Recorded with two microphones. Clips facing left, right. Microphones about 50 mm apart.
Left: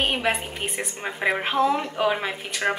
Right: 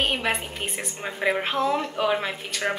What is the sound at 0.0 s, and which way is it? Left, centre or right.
A woman's voice, centre.